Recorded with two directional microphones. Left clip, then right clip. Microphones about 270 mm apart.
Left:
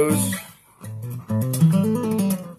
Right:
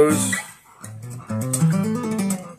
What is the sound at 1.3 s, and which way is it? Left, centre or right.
Music, left.